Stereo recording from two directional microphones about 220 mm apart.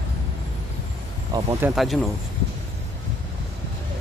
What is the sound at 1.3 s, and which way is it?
Speech, 15° right (ahead or behind).